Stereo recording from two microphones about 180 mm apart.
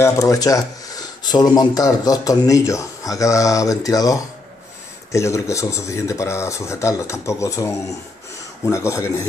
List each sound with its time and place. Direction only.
0.0 s speech: 15° left (ahead or behind)